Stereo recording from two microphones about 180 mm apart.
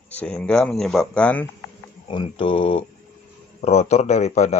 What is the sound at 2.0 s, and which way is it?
A man's voice, 30° left (ahead or behind).